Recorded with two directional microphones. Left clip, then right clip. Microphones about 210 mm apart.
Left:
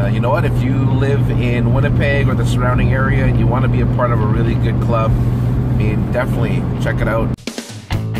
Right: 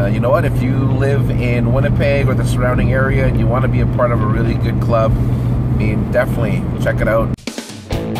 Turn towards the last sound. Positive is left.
turn(degrees=-15)  # may be behind; listen again after turning